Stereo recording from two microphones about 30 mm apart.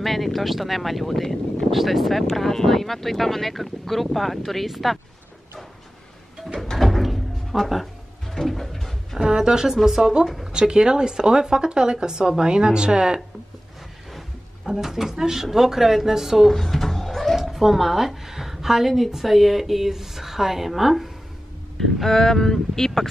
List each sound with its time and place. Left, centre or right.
0.0 s speech: centre
1.7 s speech: centre
4.6 s speech: centre
6.8 s music: centre
8.5 s bird: centre
9.2 s speech: right
14.7 s speech: centre
16.5 s cat: centre
17.4 s a woman's voice: centre
22.0 s speech: centre